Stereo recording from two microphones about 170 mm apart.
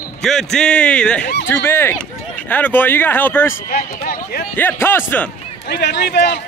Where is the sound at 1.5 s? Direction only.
15° left (ahead or behind).